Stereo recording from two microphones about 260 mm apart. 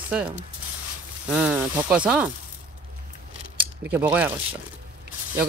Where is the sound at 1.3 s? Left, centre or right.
Centre.